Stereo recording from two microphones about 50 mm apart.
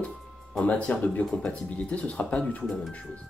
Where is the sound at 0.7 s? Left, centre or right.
Left.